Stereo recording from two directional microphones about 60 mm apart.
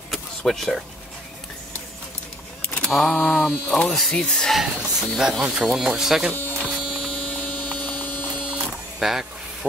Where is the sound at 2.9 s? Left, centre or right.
Centre.